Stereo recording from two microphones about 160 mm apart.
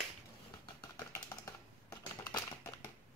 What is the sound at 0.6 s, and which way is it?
Typing, 15° left (ahead or behind).